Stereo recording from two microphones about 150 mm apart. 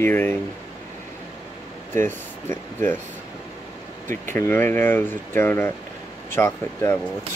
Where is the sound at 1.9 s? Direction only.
15° left (ahead or behind).